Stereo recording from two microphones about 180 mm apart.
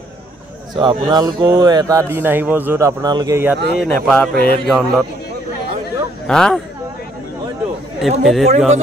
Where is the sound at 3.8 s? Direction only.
5° left (ahead or behind).